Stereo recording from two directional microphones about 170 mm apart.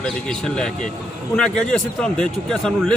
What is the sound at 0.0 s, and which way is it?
Speech, 5° left (ahead or behind).